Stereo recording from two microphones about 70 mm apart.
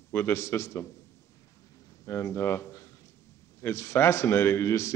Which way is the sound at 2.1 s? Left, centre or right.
Left.